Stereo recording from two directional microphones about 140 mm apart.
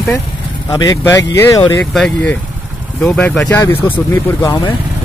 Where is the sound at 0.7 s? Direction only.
25° left (ahead or behind).